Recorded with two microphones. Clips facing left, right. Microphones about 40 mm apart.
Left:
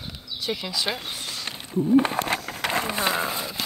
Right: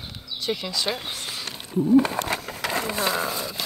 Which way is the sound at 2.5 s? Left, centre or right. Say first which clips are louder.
Left 1 dB; left.